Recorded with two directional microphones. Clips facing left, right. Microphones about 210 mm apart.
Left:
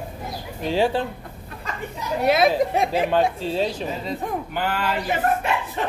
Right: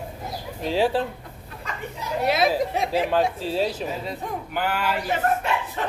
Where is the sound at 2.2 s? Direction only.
55° left (ahead or behind).